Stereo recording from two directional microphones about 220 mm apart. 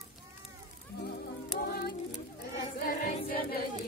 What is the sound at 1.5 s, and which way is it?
Music, 45° left (ahead or behind).